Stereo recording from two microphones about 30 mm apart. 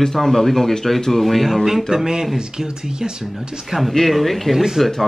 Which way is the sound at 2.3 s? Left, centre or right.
Centre.